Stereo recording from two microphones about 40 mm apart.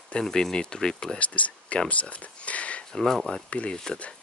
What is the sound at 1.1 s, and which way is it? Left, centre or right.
Speech, left.